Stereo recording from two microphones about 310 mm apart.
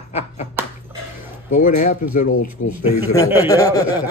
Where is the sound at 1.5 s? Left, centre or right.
Left.